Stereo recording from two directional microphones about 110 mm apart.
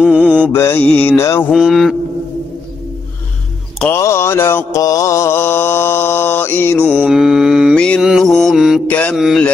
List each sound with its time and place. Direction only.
0.0 s mantra: 10° right (ahead or behind)
0.5 s mantra: 20° left (ahead or behind)
0.8 s a sound: 15° left (ahead or behind)
1.5 s mantra: centre (ahead or behind)
3.9 s mantra: 25° left (ahead or behind)
7.1 s mantra: 5° right (ahead or behind)
7.7 s mantra: 10° left (ahead or behind)
8.0 s mantra: centre (ahead or behind)
8.8 s a sound: 10° left (ahead or behind)
9.1 s mantra: 5° right (ahead or behind)